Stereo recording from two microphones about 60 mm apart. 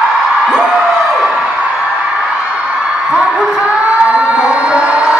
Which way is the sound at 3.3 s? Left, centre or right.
Centre.